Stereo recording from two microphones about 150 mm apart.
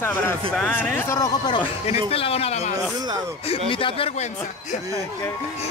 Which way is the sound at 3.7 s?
35° left (ahead or behind).